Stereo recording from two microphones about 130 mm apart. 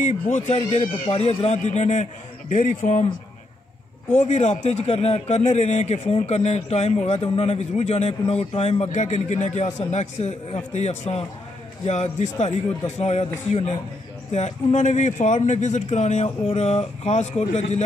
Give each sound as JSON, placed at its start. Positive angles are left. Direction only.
{"t": 0.0, "sound": "a man's voice", "side_deg": 65}
{"t": 4.2, "sound": "a man's voice", "side_deg": 60}
{"t": 8.9, "sound": "a man's voice", "side_deg": 65}